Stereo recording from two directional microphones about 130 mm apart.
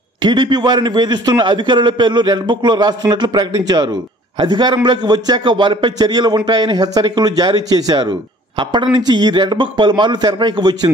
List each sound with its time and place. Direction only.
0.2 s a man's voice: 35° right (ahead or behind)